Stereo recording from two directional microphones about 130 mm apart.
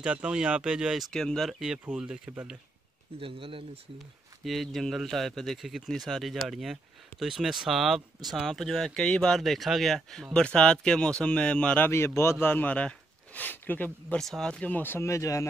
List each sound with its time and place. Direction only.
0.0 s speech: 10° right (ahead or behind)
3.2 s speech: 45° right (ahead or behind)
4.5 s speech: centre (ahead or behind); by 15.4 s 25° left (ahead or behind)